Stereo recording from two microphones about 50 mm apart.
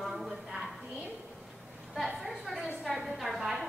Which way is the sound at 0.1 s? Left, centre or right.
Centre.